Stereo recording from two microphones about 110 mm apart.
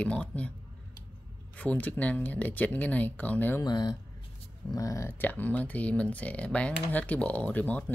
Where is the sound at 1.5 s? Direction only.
15° left (ahead or behind).